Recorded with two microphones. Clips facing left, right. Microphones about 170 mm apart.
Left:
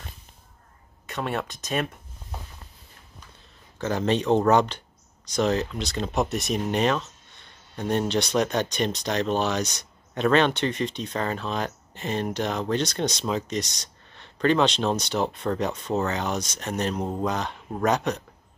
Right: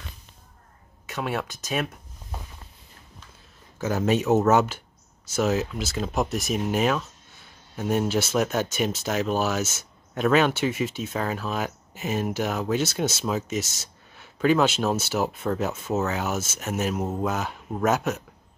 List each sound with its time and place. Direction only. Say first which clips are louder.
1.0 s speech: even; centre (ahead or behind)
3.7 s speech: right 1 dB; 5° right (ahead or behind)